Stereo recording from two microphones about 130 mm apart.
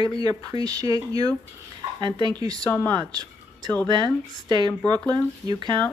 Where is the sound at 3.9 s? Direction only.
35° right (ahead or behind).